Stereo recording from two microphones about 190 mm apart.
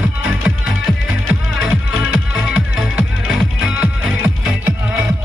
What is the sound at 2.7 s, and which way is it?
Music, 5° right (ahead or behind).